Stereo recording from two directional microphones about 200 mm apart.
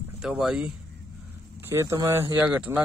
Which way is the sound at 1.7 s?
15° right (ahead or behind).